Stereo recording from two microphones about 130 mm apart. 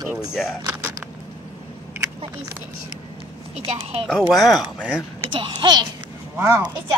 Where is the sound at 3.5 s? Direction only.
45° right (ahead or behind).